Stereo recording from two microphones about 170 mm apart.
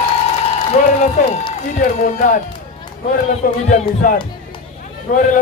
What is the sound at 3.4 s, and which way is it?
Speech, 50° left (ahead or behind).